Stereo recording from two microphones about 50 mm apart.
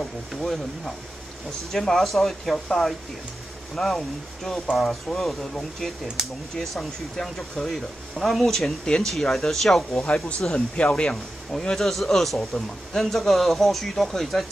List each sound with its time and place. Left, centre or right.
1.7 s a man's voice: centre
2.5 s a man's voice: centre
9.9 s speech: left
11.5 s a man's voice: centre